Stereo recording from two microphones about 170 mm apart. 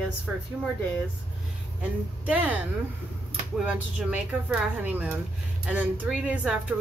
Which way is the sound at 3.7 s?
5° right (ahead or behind).